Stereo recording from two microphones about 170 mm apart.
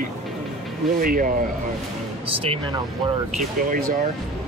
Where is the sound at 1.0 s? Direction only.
55° right (ahead or behind).